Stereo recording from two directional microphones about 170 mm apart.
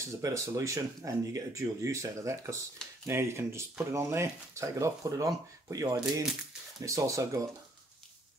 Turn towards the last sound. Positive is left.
turn(degrees=-20)  # may be behind; listen again after turning